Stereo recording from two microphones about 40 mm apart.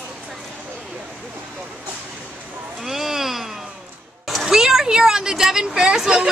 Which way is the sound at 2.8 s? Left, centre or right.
Centre.